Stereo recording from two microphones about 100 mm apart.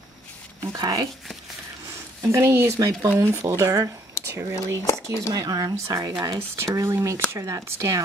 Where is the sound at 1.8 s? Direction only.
25° right (ahead or behind).